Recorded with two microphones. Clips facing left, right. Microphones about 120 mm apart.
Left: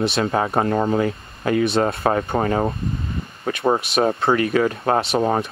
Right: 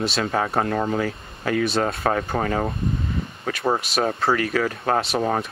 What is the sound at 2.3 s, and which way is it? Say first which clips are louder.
Speech: left 3 dB; 15° left (ahead or behind).